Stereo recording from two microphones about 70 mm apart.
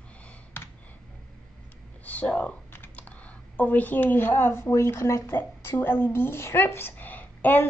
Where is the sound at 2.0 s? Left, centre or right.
Left.